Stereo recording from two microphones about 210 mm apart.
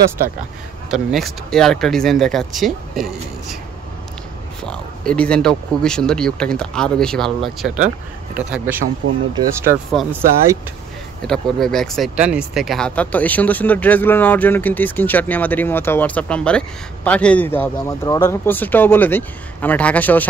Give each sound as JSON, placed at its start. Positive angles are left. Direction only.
{"t": 0.8, "sound": "speech", "side_deg": 0}
{"t": 4.6, "sound": "speech", "side_deg": 5}
{"t": 9.3, "sound": "speech", "side_deg": -20}
{"t": 11.2, "sound": "speech", "side_deg": 0}